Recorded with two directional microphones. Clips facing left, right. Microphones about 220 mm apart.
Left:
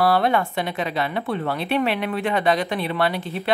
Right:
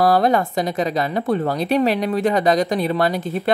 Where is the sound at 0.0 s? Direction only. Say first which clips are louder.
Right 3 dB; 40° right (ahead or behind).